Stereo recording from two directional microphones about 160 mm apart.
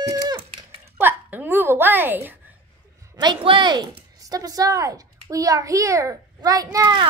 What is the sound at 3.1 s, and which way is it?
A child's voice, 25° right (ahead or behind).